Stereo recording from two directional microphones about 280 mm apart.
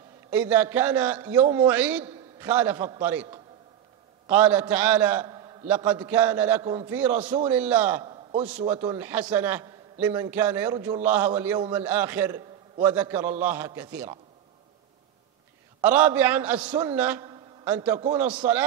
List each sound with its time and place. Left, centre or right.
0.3 s a man's voice: centre
8.0 s a sound: centre
8.5 s a man's voice: centre
15.8 s a man's voice: centre